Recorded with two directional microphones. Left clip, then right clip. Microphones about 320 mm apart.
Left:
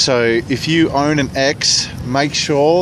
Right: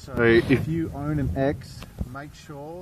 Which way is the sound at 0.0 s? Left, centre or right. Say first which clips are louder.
Left 6 dB; centre.